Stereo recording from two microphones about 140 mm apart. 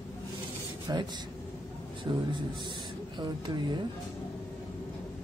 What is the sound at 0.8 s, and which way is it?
Speech, 30° right (ahead or behind).